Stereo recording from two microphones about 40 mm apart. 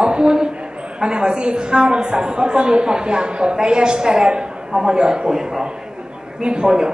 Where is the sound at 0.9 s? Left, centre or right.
Right.